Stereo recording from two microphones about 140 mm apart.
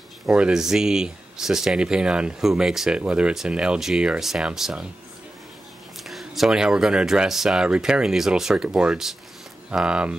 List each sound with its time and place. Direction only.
0.3 s speech: 5° right (ahead or behind)
6.0 s speech: centre (ahead or behind)